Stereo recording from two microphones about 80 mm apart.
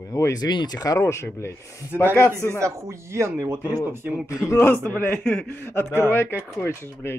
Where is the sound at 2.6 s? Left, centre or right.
Right.